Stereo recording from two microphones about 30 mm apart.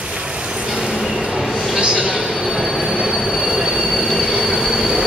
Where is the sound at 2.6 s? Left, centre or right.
Centre.